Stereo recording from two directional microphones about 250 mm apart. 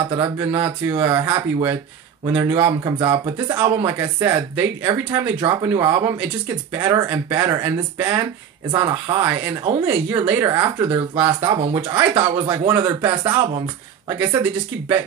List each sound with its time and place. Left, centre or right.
0.2 s speech: centre
8.7 s speech: centre
9.2 s speech: centre
12.4 s speech: centre